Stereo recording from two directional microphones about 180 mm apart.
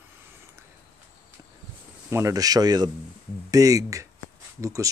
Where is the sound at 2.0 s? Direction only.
15° right (ahead or behind).